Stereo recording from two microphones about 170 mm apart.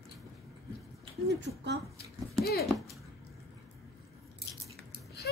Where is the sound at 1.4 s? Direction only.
90° right.